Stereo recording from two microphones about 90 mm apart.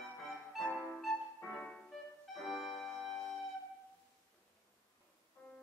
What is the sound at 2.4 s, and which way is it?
Music, centre (ahead or behind).